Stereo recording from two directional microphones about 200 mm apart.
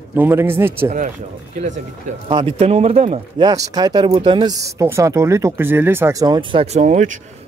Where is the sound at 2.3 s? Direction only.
25° right (ahead or behind).